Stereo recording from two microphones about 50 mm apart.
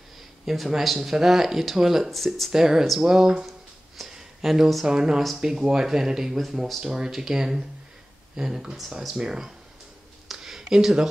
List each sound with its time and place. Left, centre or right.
0.7 s speech: centre
2.5 s speech: centre
3.4 s a sound: centre
4.8 s speech: centre
9.1 s speech: centre
10.2 s a sound: centre